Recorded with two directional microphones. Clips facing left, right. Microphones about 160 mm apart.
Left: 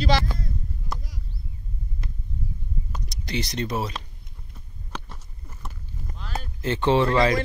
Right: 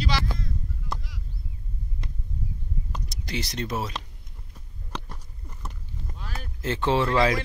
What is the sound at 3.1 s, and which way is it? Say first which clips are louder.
Speech: left 4 dB; 5° right (ahead or behind).